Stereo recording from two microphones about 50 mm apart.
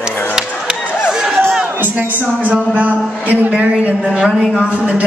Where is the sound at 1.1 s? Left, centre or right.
Centre.